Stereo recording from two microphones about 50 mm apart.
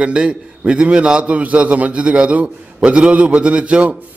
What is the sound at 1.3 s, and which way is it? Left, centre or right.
A man's voice, right.